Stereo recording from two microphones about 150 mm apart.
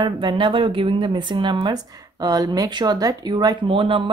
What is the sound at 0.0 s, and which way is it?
Speech, 30° right (ahead or behind).